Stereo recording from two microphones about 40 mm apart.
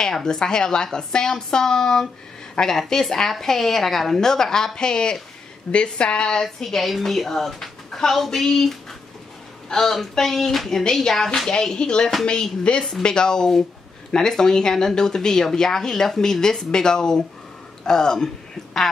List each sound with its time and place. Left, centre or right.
0.0 s a woman's voice: centre
6.4 s speech: centre
11.6 s a woman's voice: centre